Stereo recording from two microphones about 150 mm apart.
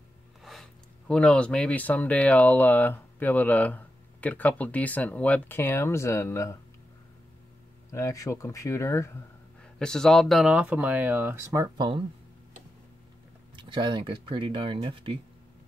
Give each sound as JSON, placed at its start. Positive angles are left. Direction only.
{"t": 0.4, "sound": "speech", "side_deg": 0}
{"t": 7.9, "sound": "speech", "side_deg": 20}
{"t": 9.8, "sound": "speech", "side_deg": 5}
{"t": 13.6, "sound": "speech", "side_deg": -30}